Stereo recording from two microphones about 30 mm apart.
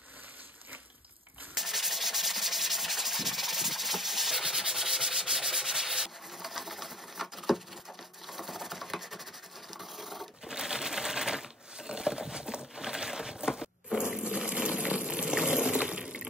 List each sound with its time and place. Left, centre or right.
1.6 s rub: centre
4.5 s sanding: centre
8.3 s a sound: centre
9.8 s printer: centre
10.5 s typewriter: right
12.7 s a sound: centre
14.2 s water: right
14.9 s boiling: right
15.3 s water: centre
15.8 s a sound: right